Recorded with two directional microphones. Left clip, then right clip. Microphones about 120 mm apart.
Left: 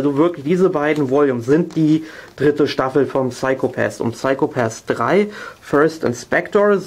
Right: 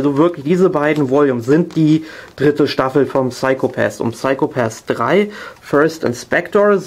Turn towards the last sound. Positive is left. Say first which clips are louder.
# right 2 dB
turn(degrees=-5)  # may be behind; listen again after turning